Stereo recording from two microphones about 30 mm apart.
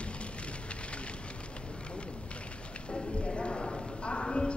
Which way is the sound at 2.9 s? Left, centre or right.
Left.